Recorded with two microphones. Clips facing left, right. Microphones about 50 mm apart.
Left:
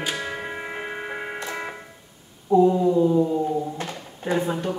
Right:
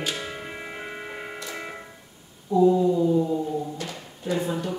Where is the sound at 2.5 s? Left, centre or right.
Left.